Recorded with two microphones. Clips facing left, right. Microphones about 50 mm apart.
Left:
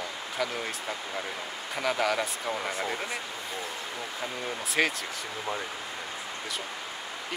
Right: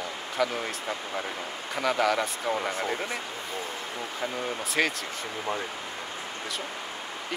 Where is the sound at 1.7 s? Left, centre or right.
Centre.